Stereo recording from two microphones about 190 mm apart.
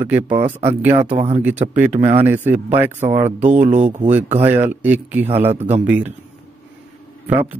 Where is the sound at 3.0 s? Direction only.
35° right (ahead or behind).